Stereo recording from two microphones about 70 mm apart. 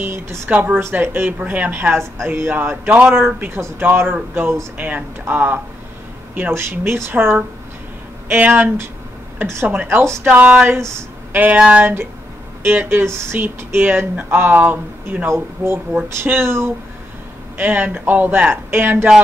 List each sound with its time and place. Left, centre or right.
0.0 s speech: right
0.5 s speech: centre
0.7 s speech: right
6.5 s speech: right
9.4 s speech: right
9.7 s speech: right
11.8 s speech: right
17.6 s speech: right